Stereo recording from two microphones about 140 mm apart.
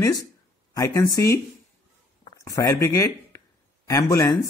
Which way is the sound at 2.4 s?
25° left (ahead or behind).